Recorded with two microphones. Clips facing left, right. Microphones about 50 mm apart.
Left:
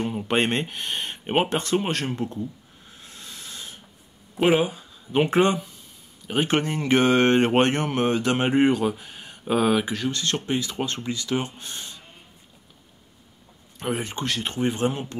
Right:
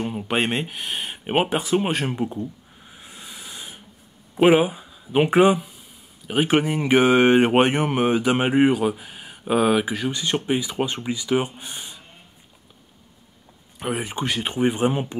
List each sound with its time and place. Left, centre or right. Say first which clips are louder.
0.0 s speech: even; centre
2.9 s hiss: right 2 dB; centre
4.4 s speech: right 4 dB; centre
13.7 s speech: right 1 dB; centre